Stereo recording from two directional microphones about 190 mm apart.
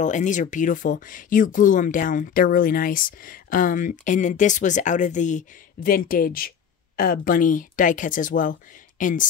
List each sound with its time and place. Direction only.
0.0 s speech: 40° left (ahead or behind)